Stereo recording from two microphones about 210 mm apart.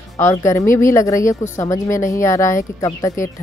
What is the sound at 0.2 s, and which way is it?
Speech, 15° left (ahead or behind).